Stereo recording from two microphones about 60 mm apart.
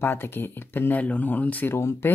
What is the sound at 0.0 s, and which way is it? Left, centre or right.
Speech, left.